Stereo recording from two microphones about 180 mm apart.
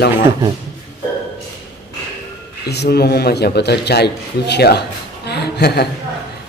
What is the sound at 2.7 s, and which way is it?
A man's voice, 65° left (ahead or behind).